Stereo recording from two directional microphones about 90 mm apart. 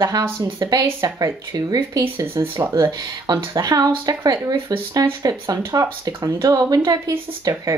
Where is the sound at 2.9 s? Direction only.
45° right (ahead or behind).